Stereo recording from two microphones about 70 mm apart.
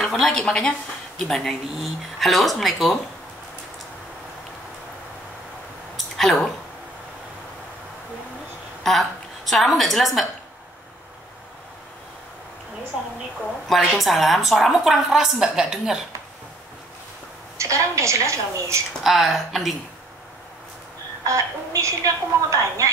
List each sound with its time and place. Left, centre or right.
0.0 s speech: centre
5.9 s a sound: centre
8.8 s a woman's voice: centre
13.7 s speech: centre
17.6 s a woman's voice: right
19.0 s speech: centre
21.3 s a woman's voice: right